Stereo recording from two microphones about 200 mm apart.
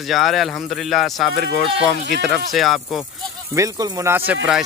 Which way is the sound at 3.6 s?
15° right (ahead or behind).